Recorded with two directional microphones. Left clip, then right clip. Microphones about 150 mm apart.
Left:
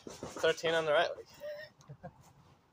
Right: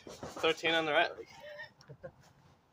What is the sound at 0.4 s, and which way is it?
Speech, 25° right (ahead or behind).